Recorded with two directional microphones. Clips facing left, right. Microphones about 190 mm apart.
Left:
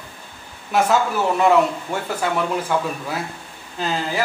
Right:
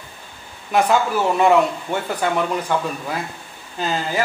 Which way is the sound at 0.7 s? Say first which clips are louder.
Right 1 dB; centre (ahead or behind).